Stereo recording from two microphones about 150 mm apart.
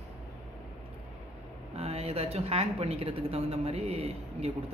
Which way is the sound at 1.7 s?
45° right (ahead or behind).